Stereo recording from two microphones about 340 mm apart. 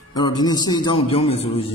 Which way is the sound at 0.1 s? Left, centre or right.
Centre.